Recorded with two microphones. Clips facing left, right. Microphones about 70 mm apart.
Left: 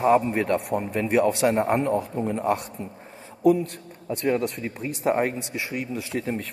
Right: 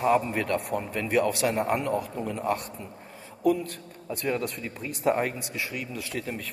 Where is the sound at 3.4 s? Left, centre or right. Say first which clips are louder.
Left 5 dB; left.